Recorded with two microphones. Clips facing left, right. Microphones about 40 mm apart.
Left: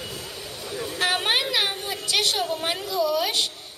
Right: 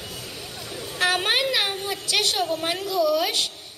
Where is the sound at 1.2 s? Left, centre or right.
Centre.